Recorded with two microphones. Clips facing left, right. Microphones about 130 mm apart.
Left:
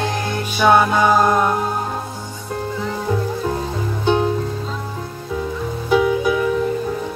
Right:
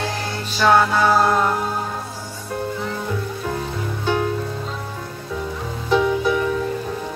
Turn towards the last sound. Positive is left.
turn(degrees=10)  # may be behind; listen again after turning